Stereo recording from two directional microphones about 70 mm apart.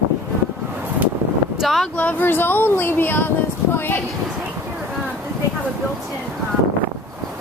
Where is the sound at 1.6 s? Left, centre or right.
Centre.